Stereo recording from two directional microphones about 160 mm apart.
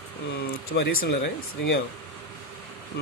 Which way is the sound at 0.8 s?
80° left.